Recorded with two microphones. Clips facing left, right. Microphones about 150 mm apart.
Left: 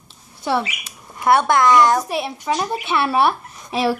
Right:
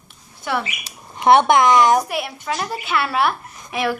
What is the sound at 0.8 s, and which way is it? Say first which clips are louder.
A child's voice: right 3 dB; 25° right (ahead or behind).